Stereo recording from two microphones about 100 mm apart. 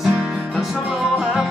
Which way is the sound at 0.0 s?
10° right (ahead or behind).